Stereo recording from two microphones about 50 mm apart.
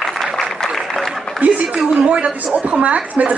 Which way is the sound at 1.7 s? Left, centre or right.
Centre.